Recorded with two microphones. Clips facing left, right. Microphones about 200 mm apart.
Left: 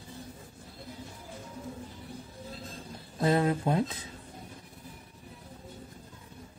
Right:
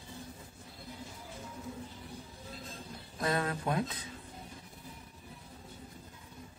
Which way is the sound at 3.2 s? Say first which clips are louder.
Left 7 dB; 25° left (ahead or behind).